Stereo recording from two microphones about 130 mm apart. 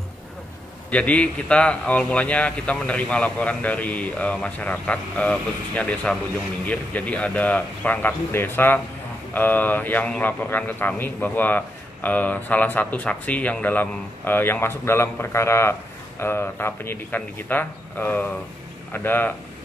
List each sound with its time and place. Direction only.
0.8 s a man's voice: 10° left (ahead or behind)